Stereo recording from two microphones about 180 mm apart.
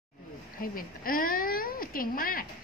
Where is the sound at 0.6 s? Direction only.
55° left (ahead or behind).